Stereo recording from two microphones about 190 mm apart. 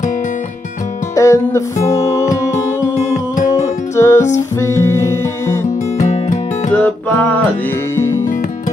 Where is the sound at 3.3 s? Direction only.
45° left (ahead or behind).